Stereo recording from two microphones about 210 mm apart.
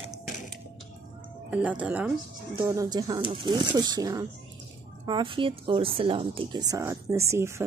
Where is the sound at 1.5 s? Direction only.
5° right (ahead or behind).